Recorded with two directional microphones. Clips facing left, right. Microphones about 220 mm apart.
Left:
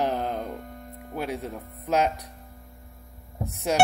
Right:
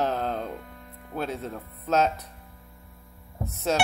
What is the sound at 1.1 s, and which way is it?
Speech, 15° left (ahead or behind).